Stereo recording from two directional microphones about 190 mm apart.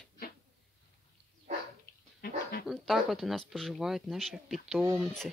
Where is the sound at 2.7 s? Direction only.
Centre (ahead or behind).